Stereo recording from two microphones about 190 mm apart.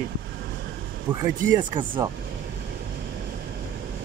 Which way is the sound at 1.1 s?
5° right (ahead or behind).